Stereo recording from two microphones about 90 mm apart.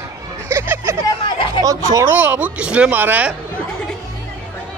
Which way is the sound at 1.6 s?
40° right (ahead or behind).